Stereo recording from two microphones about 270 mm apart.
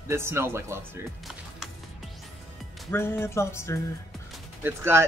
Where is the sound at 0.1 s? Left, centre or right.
Centre.